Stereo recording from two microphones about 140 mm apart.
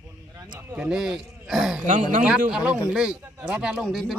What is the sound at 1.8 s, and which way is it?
Speech, 60° right (ahead or behind).